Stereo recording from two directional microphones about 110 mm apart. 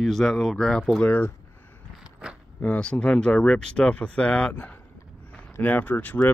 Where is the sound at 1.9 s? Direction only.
10° right (ahead or behind).